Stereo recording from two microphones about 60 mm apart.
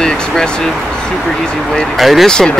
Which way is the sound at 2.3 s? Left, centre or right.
Centre.